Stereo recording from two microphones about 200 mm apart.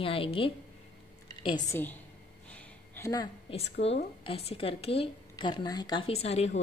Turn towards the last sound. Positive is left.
turn(degrees=30)  # may be behind; listen again after turning